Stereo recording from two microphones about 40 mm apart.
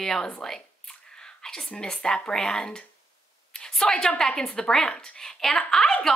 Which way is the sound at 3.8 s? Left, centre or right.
Centre.